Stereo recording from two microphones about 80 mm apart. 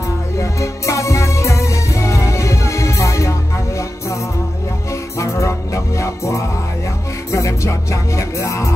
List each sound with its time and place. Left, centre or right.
0.4 s music: left